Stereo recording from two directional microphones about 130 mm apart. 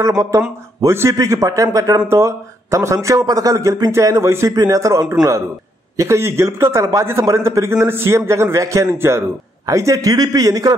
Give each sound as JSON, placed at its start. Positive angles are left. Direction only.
{"t": 0.0, "sound": "speech", "side_deg": -25}